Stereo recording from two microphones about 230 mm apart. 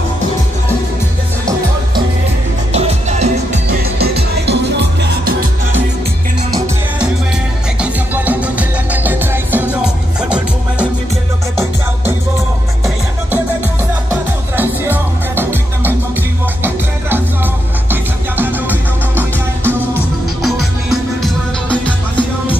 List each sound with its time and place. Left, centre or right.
2.7 s music: right
4.0 s music: right
7.8 s music: centre
14.6 s music: centre
18.3 s music: centre
19.1 s music: centre